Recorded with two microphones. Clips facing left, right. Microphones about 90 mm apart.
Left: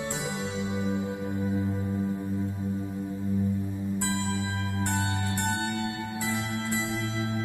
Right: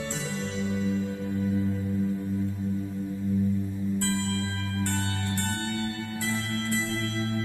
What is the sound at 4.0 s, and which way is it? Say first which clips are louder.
Music: even; 20° left (ahead or behind).